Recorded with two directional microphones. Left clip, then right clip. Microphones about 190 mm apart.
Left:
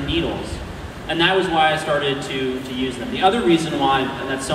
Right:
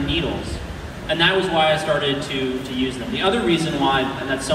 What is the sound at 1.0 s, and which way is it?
Speech, 30° left (ahead or behind).